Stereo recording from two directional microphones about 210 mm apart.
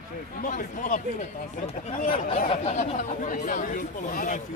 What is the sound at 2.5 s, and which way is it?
Speech, 30° left (ahead or behind).